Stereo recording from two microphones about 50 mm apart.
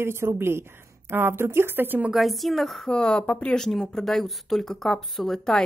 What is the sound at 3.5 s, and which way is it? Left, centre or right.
Speech, centre.